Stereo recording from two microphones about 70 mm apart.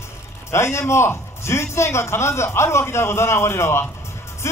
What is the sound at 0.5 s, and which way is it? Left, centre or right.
A man's voice, left.